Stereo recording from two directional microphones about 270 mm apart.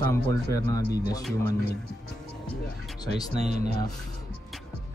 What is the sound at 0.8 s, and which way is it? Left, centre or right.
Speech, left.